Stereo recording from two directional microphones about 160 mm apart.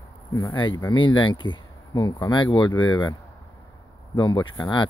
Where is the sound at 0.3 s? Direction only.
25° left (ahead or behind).